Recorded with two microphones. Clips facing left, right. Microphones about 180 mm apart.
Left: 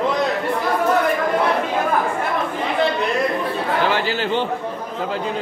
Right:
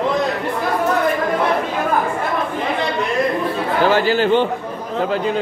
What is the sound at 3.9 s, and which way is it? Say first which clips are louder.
Speech: right 6 dB; 45° right (ahead or behind).